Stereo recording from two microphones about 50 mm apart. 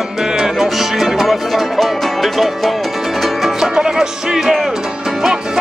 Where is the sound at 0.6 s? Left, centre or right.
Centre.